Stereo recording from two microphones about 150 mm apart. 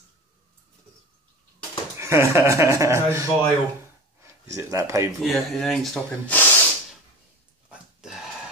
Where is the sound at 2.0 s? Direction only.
20° right (ahead or behind).